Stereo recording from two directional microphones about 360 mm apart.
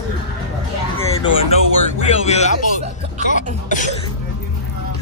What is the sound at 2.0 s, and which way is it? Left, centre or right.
Speech, centre.